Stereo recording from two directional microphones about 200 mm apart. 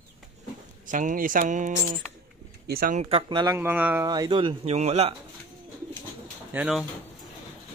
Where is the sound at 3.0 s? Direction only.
25° right (ahead or behind); by 4.1 s 10° right (ahead or behind).